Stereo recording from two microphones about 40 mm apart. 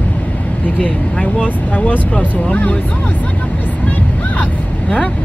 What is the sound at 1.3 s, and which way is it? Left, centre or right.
Speech, left.